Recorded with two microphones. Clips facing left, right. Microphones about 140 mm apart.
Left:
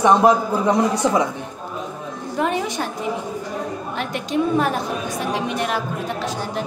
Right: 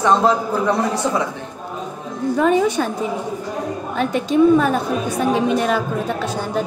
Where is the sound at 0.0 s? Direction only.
15° left (ahead or behind).